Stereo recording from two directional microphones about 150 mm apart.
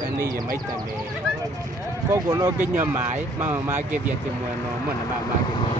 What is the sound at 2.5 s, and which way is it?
Speech, 15° right (ahead or behind).